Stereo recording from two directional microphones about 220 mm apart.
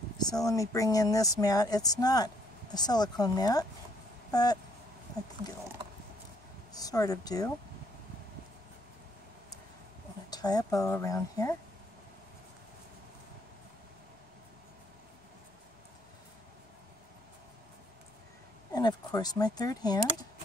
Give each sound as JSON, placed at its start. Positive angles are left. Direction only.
{"t": 0.5, "sound": "speech", "side_deg": 15}
{"t": 6.7, "sound": "speech", "side_deg": 15}
{"t": 10.3, "sound": "speech", "side_deg": 15}
{"t": 18.7, "sound": "speech", "side_deg": 15}